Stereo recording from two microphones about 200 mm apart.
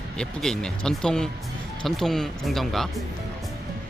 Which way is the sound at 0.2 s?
5° left (ahead or behind).